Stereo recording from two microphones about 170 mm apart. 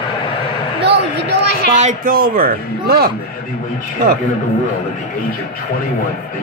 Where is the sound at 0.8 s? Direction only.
80° right.